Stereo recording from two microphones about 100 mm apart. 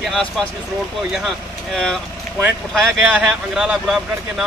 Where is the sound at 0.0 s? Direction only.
5° left (ahead or behind).